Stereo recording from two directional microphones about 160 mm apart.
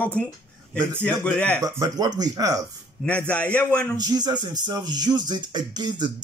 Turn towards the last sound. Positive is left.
turn(degrees=-25)  # may be behind; listen again after turning